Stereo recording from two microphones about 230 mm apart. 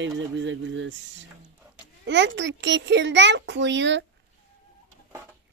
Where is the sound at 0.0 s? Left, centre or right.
Right.